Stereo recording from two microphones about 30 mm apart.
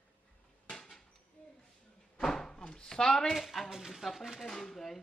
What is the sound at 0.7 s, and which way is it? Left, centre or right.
Dishes, centre.